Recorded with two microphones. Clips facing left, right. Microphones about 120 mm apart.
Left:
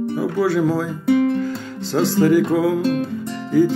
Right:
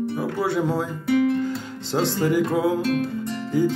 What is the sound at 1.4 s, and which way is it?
Music, 20° right (ahead or behind).